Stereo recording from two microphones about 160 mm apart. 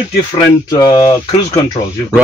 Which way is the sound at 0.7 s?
25° left (ahead or behind).